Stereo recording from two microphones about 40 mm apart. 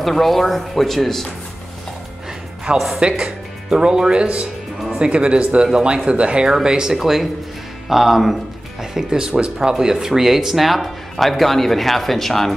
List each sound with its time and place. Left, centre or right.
0.0 s speech: centre
3.0 s speech: right; by 8.4 s centre
8.9 s speech: centre